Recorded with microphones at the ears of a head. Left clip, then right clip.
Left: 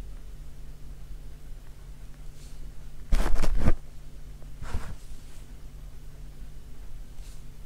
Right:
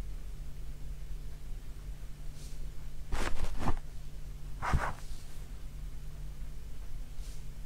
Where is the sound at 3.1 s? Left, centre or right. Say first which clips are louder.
Left 5 dB; left.